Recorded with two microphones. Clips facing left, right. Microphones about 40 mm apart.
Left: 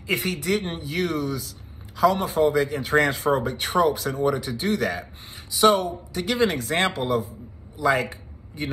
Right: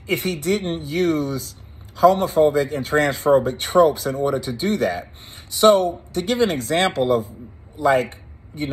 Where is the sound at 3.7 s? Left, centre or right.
Right.